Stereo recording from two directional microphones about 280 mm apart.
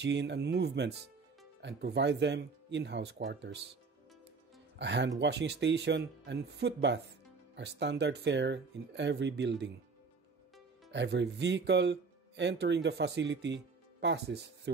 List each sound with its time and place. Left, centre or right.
0.0 s speech: right
4.7 s speech: right
10.9 s speech: right